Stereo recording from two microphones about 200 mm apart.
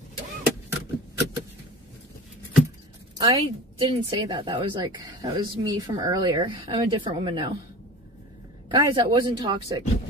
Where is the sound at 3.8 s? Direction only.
25° right (ahead or behind).